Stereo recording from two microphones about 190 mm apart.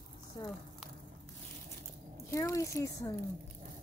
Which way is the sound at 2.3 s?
15° left (ahead or behind).